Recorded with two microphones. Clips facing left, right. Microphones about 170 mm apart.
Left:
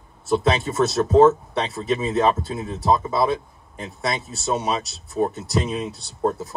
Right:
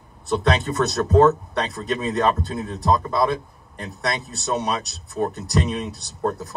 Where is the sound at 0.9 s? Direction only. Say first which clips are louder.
Left 1 dB; 20° left (ahead or behind).